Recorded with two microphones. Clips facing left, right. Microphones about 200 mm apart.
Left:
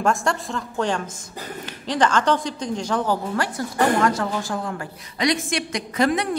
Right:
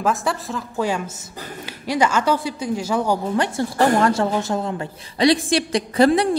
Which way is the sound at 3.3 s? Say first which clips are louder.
Right 3 dB; 25° right (ahead or behind).